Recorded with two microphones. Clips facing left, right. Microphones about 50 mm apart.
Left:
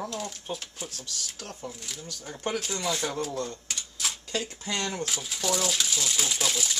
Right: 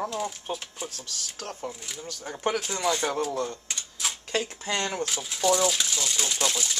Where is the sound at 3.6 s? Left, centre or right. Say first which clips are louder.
Right 1 dB; centre.